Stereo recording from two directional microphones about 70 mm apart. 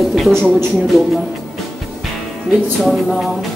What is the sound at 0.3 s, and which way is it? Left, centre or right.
Speech, right.